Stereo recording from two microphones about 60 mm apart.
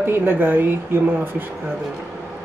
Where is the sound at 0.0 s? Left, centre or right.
Right.